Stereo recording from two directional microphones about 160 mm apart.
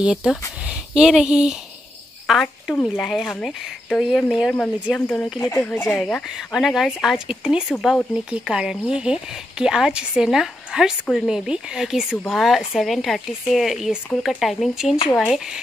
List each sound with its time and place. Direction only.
0.0 s speech: 5° right (ahead or behind)
5.4 s speech: 20° left (ahead or behind); by 15.6 s centre (ahead or behind)